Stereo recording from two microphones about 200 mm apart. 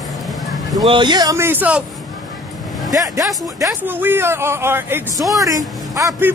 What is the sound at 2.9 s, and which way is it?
A man's voice, 15° right (ahead or behind).